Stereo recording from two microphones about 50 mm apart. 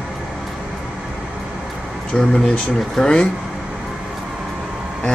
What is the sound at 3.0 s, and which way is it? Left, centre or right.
Speech, centre.